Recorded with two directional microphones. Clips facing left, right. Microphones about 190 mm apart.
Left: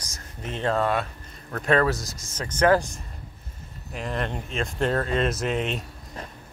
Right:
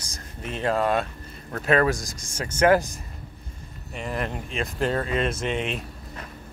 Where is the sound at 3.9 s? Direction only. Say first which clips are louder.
Even; 5° right (ahead or behind).